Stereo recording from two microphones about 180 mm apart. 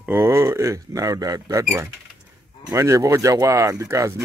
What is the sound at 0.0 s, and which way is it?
Speech, 15° right (ahead or behind).